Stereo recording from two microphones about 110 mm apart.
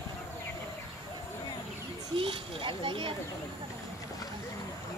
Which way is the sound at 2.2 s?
50° right (ahead or behind).